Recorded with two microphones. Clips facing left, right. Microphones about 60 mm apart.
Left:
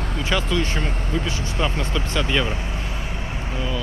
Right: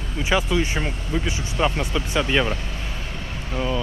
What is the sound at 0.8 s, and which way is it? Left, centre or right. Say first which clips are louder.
Speech: even; left.